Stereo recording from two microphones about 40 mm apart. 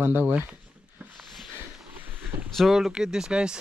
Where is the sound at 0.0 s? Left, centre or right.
Right.